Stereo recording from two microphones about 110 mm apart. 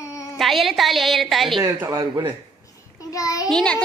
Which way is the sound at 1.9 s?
40° right (ahead or behind).